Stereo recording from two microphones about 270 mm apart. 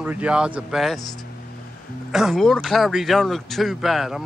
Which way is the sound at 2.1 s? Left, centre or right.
Centre.